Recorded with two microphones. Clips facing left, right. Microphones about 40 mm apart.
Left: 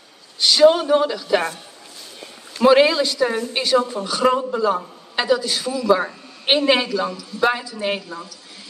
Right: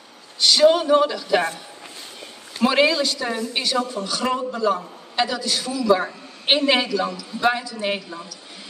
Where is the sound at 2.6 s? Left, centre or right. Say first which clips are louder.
Left 4 dB; centre.